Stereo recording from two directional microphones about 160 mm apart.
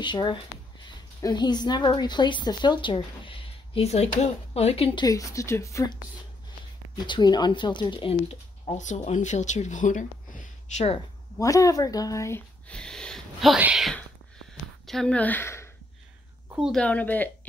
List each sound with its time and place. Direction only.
0.0 s a woman's voice: 30° left (ahead or behind)
5.0 s a woman's voice: 20° left (ahead or behind)
7.0 s speech: 25° left (ahead or behind); by 11.0 s 45° left (ahead or behind)
11.3 s a woman's voice: 20° left (ahead or behind)
16.5 s a woman's voice: 5° right (ahead or behind)
16.8 s speech: 10° left (ahead or behind)